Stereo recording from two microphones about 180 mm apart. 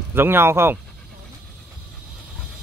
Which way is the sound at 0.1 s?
10° right (ahead or behind).